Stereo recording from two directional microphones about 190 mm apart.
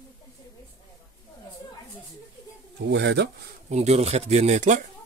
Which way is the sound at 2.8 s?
65° right (ahead or behind).